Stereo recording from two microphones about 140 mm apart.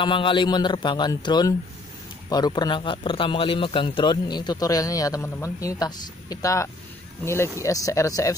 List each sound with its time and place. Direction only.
0.0 s a man's voice: 35° left (ahead or behind)